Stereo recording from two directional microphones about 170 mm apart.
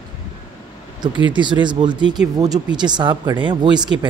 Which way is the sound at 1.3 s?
25° right (ahead or behind).